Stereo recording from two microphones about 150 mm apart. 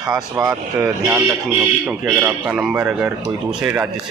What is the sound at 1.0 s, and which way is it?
Speech, 15° right (ahead or behind).